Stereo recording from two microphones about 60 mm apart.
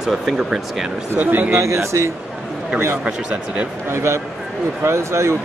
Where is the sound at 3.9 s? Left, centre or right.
Right.